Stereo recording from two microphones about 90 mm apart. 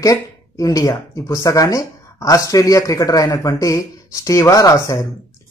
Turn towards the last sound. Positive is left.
turn(degrees=40)  # may be behind; listen again after turning